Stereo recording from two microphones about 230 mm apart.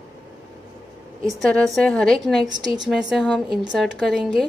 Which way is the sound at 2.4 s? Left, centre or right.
Centre.